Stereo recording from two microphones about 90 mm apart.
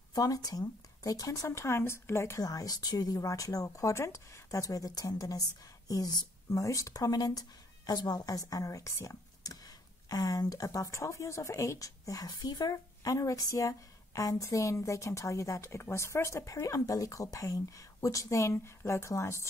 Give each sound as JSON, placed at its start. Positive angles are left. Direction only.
{"t": 0.1, "sound": "speech", "side_deg": 45}